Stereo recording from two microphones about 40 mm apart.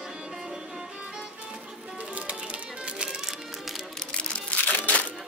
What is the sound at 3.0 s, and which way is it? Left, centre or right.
Music, centre.